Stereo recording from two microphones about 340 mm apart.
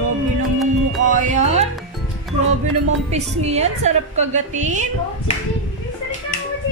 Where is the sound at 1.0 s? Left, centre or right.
Right.